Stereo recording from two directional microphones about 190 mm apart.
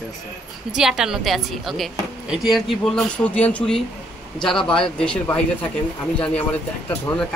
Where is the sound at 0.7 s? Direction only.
Centre (ahead or behind).